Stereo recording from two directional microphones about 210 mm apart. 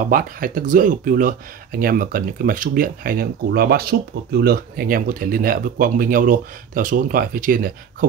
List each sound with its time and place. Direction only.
0.0 s speech: 40° right (ahead or behind)